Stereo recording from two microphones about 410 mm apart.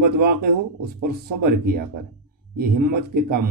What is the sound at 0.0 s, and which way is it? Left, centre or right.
Speech, right.